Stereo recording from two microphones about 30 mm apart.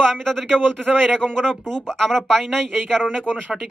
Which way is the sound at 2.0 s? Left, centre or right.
Centre.